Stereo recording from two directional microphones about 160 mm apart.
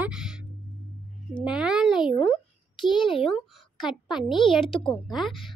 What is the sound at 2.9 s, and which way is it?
Speech, 30° left (ahead or behind).